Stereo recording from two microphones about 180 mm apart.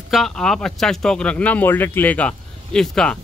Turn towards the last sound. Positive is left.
turn(degrees=5)  # may be behind; listen again after turning